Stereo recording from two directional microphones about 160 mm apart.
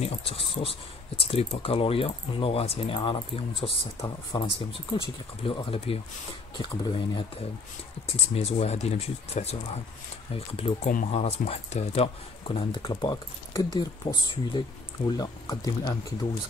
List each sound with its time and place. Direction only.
0.0 s speech: 40° left (ahead or behind)